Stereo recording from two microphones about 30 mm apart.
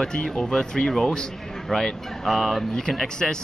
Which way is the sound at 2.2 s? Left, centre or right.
Centre.